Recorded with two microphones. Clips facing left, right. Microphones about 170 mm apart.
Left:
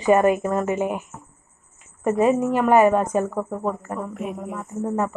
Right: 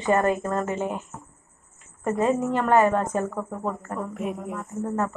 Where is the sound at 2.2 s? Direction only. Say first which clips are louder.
Left 4 dB; 20° left (ahead or behind).